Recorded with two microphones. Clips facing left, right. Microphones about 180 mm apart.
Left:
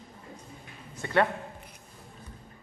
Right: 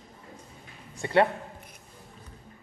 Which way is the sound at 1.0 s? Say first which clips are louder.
Right 3 dB; 30° right (ahead or behind).